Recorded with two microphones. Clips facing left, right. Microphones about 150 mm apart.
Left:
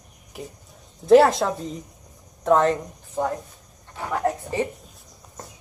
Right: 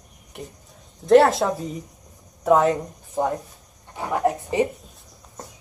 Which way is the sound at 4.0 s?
15° right (ahead or behind).